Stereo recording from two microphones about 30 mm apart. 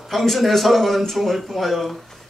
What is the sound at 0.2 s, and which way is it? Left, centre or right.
A man's voice, centre.